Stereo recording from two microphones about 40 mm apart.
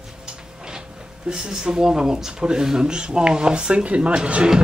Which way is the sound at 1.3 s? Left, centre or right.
Centre.